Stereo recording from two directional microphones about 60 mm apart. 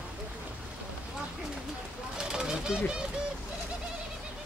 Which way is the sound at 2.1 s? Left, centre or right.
Centre.